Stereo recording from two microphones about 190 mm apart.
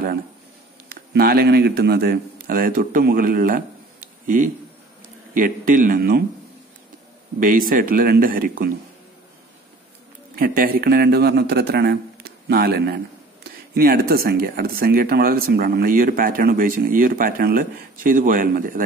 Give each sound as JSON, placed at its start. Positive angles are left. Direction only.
{"t": 0.8, "sound": "speech", "side_deg": -55}
{"t": 7.3, "sound": "speech", "side_deg": -50}
{"t": 10.3, "sound": "a man's voice", "side_deg": -50}